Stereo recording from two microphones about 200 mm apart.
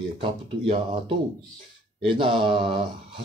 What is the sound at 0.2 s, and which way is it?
Speech, 25° right (ahead or behind).